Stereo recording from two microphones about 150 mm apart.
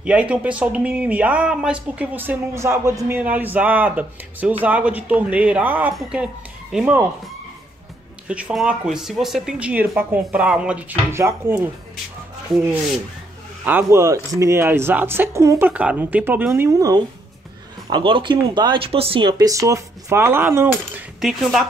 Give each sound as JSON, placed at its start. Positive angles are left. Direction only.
{"t": 0.0, "sound": "speech", "side_deg": -10}
{"t": 8.3, "sound": "speech", "side_deg": -10}
{"t": 13.7, "sound": "speech", "side_deg": -15}
{"t": 15.7, "sound": "speech", "side_deg": -10}
{"t": 17.8, "sound": "speech", "side_deg": -35}
{"t": 21.2, "sound": "speech", "side_deg": 0}